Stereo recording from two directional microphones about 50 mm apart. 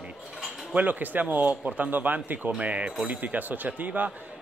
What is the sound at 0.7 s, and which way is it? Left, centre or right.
A man's voice, right.